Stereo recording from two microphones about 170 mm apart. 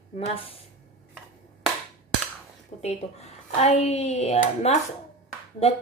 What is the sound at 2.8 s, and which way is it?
Speech, 40° left (ahead or behind).